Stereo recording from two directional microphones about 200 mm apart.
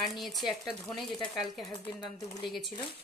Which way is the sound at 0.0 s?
Centre (ahead or behind).